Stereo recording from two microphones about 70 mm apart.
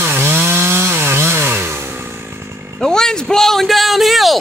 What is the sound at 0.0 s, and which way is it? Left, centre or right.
Chainsaw, right.